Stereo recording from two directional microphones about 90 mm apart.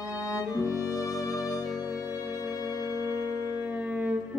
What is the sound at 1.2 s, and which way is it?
Music, 40° left (ahead or behind).